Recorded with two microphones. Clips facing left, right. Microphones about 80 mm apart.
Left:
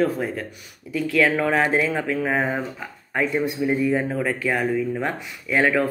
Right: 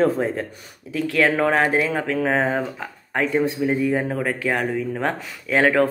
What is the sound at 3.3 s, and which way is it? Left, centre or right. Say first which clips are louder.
Speech: right 3 dB; right.